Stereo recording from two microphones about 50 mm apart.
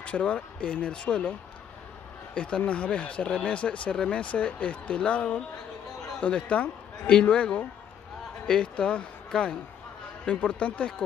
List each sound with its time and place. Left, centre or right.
0.0 s speech: left
2.3 s speech: centre